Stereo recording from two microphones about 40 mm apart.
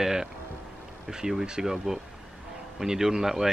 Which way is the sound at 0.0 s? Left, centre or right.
Centre.